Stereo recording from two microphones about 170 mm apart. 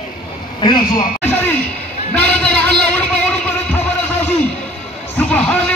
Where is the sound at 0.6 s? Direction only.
25° left (ahead or behind).